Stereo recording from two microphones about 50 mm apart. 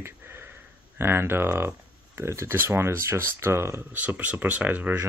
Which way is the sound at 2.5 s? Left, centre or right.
Right.